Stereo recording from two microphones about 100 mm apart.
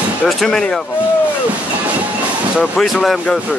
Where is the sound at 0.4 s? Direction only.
5° left (ahead or behind).